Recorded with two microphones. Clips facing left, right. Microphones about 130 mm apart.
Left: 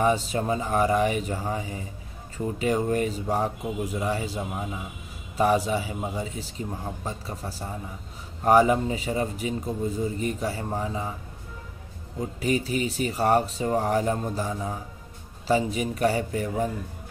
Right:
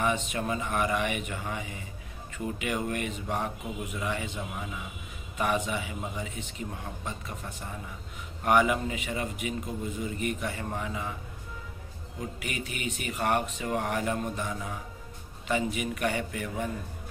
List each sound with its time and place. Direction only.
0.0 s speech: 35° left (ahead or behind)
12.2 s speech: 35° left (ahead or behind)